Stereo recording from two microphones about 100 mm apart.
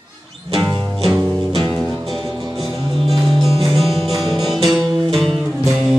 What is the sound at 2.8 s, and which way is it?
Music, 60° right (ahead or behind).